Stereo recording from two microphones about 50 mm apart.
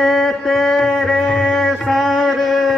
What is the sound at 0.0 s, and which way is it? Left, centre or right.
Mantra, centre.